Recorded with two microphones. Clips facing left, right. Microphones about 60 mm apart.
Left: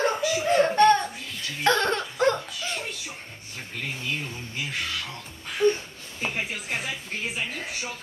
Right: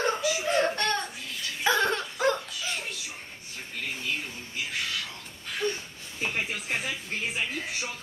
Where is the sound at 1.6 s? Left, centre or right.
Centre.